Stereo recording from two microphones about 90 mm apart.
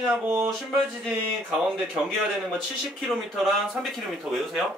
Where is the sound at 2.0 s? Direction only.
10° right (ahead or behind).